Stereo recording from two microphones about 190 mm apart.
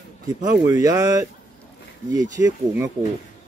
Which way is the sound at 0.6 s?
15° right (ahead or behind).